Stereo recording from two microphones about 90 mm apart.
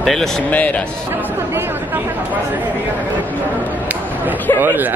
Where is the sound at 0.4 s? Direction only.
15° left (ahead or behind).